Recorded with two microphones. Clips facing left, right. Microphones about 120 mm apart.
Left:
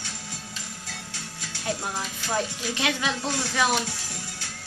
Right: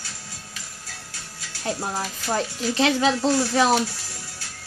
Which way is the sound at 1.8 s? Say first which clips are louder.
Right 4 dB; 35° right (ahead or behind).